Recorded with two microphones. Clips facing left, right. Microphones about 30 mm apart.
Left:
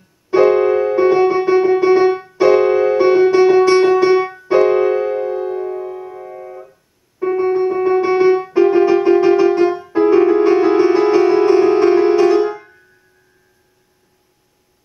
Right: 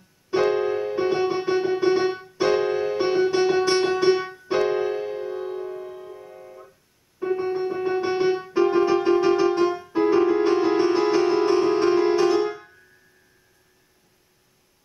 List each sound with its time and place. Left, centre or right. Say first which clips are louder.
0.3 s keyboard: left 10 dB; centre
4.5 s music: left 9 dB; centre
6.1 s music: left 10 dB; left
7.2 s music: left 9 dB; centre